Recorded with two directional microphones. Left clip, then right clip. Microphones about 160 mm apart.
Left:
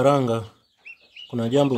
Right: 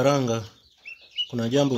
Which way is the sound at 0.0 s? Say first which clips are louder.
Left 3 dB; 15° left (ahead or behind).